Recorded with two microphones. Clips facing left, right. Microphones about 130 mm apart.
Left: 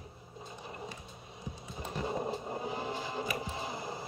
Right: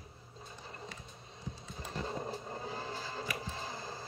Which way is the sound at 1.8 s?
15° left (ahead or behind).